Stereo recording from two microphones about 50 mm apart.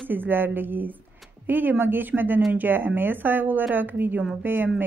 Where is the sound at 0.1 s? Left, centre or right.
Right.